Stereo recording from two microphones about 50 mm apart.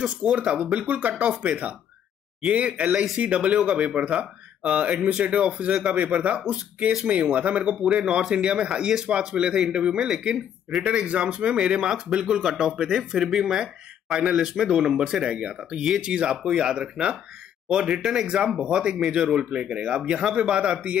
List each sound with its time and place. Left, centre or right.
0.2 s speech: right
7.9 s speech: centre